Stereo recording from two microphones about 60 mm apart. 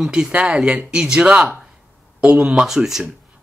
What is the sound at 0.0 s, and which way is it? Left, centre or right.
Speech, centre.